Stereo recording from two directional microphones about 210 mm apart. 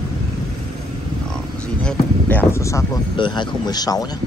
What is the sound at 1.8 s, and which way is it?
Speech, 10° left (ahead or behind).